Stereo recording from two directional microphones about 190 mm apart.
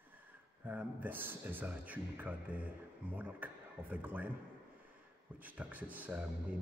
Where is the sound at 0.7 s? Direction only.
10° right (ahead or behind).